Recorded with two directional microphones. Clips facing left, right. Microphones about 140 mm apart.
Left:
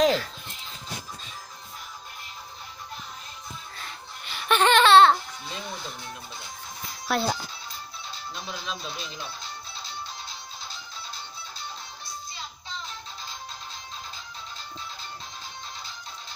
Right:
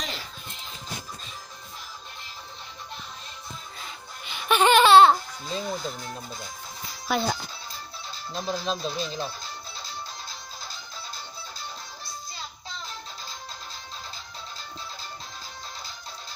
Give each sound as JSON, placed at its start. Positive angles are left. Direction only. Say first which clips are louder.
{"t": 3.7, "sound": "a sound", "louder": "even", "side_deg": -5}
{"t": 5.5, "sound": "speech", "louder": "right 7 dB", "side_deg": -40}
{"t": 7.1, "sound": "speech", "louder": "even", "side_deg": 5}
{"t": 8.3, "sound": "speech", "louder": "right 7 dB", "side_deg": -35}